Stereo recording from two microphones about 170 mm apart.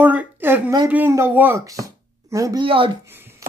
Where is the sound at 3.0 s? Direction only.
15° right (ahead or behind).